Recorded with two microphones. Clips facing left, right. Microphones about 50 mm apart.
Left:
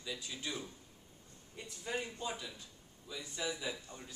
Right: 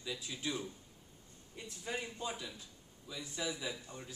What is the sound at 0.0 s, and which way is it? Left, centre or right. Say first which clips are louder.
A man's voice: right 2 dB; centre.